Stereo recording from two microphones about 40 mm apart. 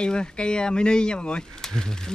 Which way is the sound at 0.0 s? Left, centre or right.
Left.